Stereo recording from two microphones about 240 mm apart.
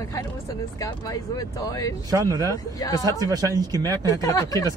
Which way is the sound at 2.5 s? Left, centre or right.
Centre.